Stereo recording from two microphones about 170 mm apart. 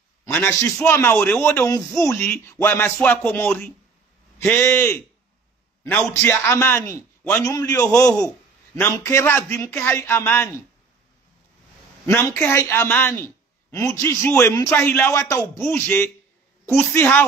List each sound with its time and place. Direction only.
0.2 s a man's voice: 15° left (ahead or behind)
6.0 s a man's voice: 10° left (ahead or behind)
12.1 s a man's voice: 15° left (ahead or behind)